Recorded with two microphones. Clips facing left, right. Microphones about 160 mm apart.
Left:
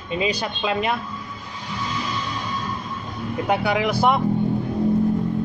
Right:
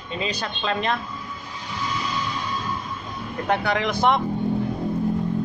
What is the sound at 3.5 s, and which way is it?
Speech, 10° left (ahead or behind).